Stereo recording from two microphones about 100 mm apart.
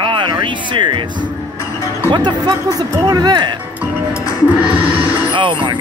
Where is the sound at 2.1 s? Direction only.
50° right (ahead or behind).